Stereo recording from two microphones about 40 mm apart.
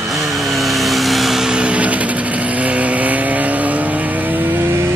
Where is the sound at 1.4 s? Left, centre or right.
Right.